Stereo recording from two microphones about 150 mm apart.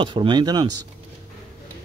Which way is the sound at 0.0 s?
35° right (ahead or behind).